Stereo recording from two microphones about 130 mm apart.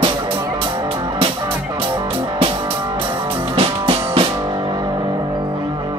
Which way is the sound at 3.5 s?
45° right (ahead or behind).